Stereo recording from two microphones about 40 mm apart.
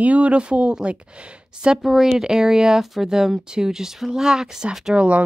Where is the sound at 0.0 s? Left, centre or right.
Right.